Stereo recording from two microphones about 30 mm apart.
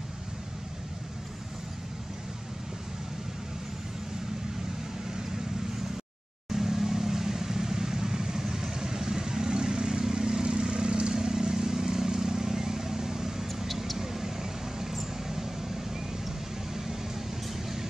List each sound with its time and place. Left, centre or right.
6.5 s vehicle: centre